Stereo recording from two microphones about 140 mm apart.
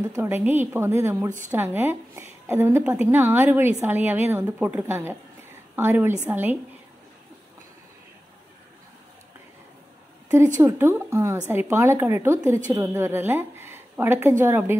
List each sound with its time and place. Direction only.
0.1 s a woman's voice: 15° right (ahead or behind)
10.6 s a woman's voice: 20° right (ahead or behind)